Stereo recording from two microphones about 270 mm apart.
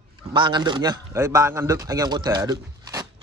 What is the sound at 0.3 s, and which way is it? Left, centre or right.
A man's voice, centre.